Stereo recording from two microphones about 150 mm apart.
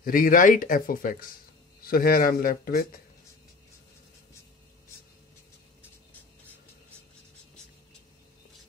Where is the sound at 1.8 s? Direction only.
80° left.